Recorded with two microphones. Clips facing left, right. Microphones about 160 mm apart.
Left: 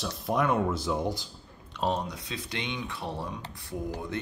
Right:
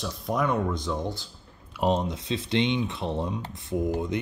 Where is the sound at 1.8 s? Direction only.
20° right (ahead or behind).